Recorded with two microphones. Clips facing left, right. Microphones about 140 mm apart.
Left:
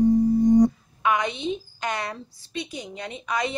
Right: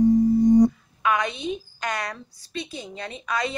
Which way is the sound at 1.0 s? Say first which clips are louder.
Even; 20° left (ahead or behind).